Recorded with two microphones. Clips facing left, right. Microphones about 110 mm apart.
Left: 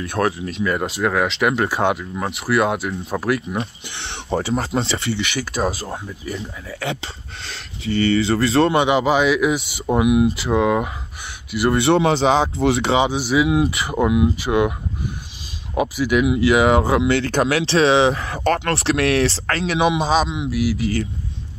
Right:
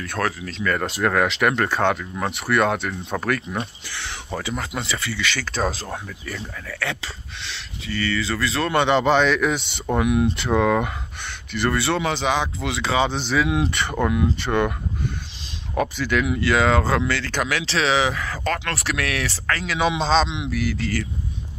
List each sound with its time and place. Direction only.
0.0 s speech: 25° left (ahead or behind)
0.5 s speech: 15° left (ahead or behind)
0.8 s speech: centre (ahead or behind)
3.5 s speech: 25° left (ahead or behind)
5.3 s speech: 10° left (ahead or behind)
6.0 s speech: 20° left (ahead or behind)
7.4 s speech: 45° left (ahead or behind)
7.9 s speech: 30° left (ahead or behind)
8.7 s speech: 10° left (ahead or behind)
11.7 s speech: 25° left (ahead or behind)
13.1 s speech: 10° left (ahead or behind)
15.7 s speech: 10° left (ahead or behind)
17.2 s speech: 30° left (ahead or behind)
19.8 s speech: 10° left (ahead or behind)